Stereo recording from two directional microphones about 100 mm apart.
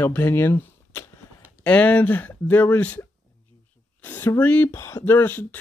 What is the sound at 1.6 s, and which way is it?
Speech, 15° left (ahead or behind).